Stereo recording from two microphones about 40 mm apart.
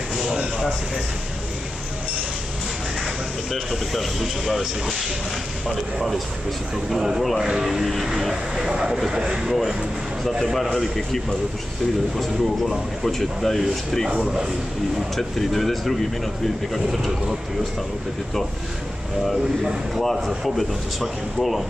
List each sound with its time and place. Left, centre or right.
0.2 s a sound: centre
3.5 s speech: centre
5.9 s speech: centre
7.8 s speech: centre
8.2 s speech: centre
9.5 s speech: centre
12.2 s speech: centre
15.1 s speech: centre
20.0 s speech: centre